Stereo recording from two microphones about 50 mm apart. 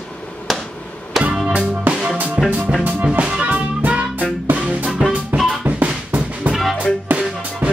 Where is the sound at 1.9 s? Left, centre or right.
Right.